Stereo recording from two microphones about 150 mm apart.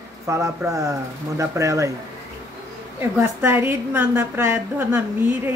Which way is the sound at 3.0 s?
15° right (ahead or behind).